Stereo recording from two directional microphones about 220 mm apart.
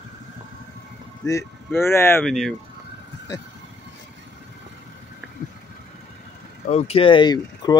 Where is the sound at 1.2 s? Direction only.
15° left (ahead or behind).